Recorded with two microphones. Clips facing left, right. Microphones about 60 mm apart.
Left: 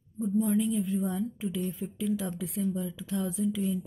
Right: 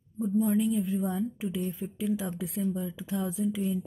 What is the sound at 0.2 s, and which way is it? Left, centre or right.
A woman's voice, centre.